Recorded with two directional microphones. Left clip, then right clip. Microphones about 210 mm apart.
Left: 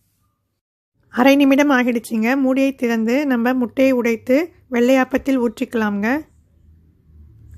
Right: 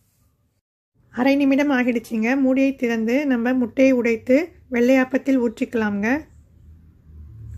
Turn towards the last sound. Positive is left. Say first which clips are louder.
# left 2 dB
turn(degrees=25)  # may be behind; listen again after turning